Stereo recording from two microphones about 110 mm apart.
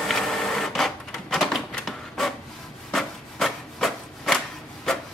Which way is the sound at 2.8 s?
5° left (ahead or behind).